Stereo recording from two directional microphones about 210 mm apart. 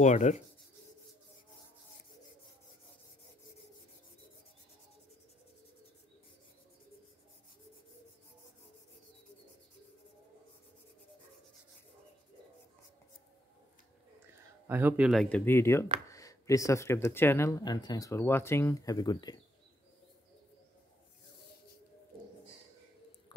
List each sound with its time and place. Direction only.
0.0 s rub: 35° left (ahead or behind)
14.3 s speech: 10° right (ahead or behind); by 19.4 s 20° left (ahead or behind)